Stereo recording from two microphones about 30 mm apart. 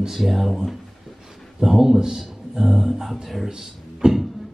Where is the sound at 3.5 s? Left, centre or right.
Centre.